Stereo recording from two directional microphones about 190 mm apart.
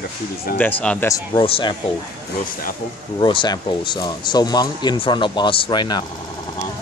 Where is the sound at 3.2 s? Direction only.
25° left (ahead or behind).